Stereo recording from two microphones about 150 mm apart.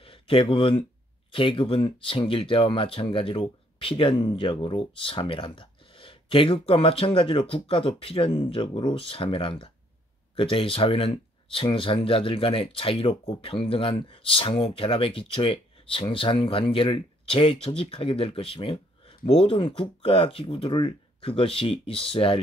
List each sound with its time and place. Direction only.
0.0 s speech: 35° left (ahead or behind)